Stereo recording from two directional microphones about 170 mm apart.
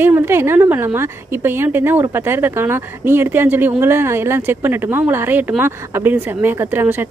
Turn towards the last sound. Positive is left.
turn(degrees=-10)  # may be behind; listen again after turning